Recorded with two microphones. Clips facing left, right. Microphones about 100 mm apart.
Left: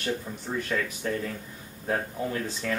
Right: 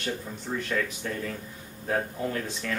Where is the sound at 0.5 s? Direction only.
5° left (ahead or behind).